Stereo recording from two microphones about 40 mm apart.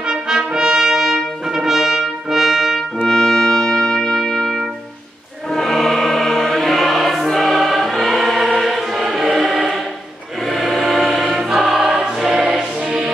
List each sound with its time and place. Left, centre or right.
0.0 s brass instrument: centre
3.0 s trumpet: centre
5.5 s music: centre
10.4 s choir: centre
12.8 s music: right